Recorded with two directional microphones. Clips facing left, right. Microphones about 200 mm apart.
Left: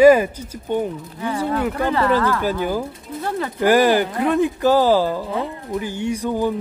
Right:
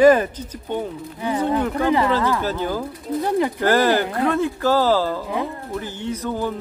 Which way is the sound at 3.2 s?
15° right (ahead or behind).